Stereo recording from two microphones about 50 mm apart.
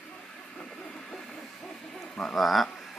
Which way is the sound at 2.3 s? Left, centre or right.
Centre.